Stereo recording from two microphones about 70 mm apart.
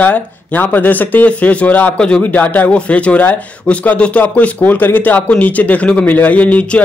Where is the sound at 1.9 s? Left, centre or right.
Centre.